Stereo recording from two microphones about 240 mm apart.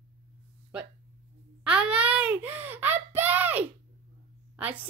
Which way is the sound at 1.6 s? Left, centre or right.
Centre.